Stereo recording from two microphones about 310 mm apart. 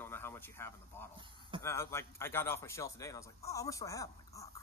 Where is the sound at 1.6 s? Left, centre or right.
Centre.